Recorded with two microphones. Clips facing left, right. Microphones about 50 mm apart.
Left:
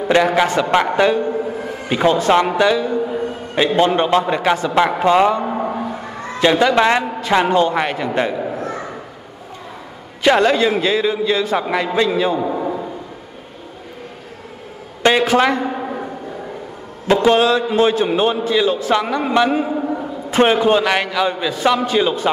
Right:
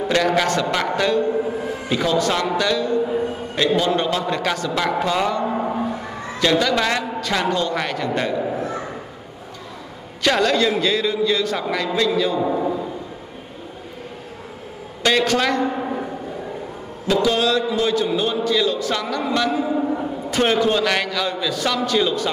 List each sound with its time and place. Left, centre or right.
0.3 s a man's voice: centre
3.7 s a man's voice: left
5.3 s a sound: centre
6.4 s a man's voice: left
10.2 s a man's voice: centre
12.4 s a man's voice: centre
15.0 s a man's voice: left
17.1 s a man's voice: left